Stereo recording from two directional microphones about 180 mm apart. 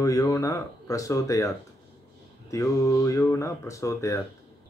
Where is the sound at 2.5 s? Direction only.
15° left (ahead or behind).